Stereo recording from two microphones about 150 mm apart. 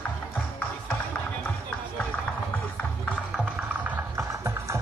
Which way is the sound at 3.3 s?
10° right (ahead or behind).